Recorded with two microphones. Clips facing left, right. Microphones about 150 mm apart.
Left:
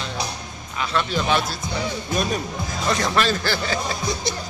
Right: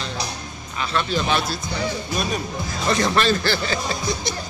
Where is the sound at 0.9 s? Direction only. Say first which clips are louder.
Even; 10° left (ahead or behind).